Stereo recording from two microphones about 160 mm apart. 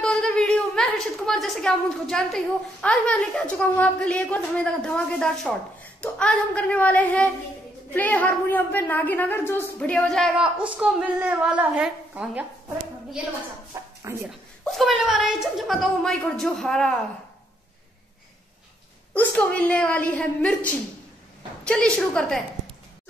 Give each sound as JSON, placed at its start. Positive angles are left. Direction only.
{"t": 0.0, "sound": "a woman's voice", "side_deg": 5}
{"t": 10.6, "sound": "a woman's voice", "side_deg": -5}
{"t": 14.0, "sound": "a woman's voice", "side_deg": -15}
{"t": 14.6, "sound": "a woman's voice", "side_deg": 0}
{"t": 19.1, "sound": "a woman's voice", "side_deg": 10}
{"t": 21.6, "sound": "a woman's voice", "side_deg": 5}